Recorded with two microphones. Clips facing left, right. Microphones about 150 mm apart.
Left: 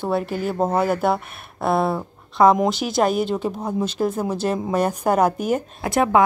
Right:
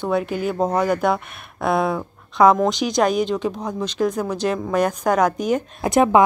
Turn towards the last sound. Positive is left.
turn(degrees=-20)  # may be behind; listen again after turning